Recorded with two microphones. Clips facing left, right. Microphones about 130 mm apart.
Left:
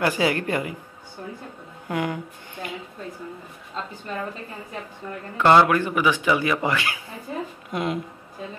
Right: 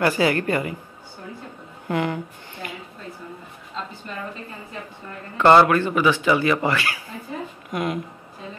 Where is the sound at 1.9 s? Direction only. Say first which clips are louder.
Right 2 dB; 10° left (ahead or behind).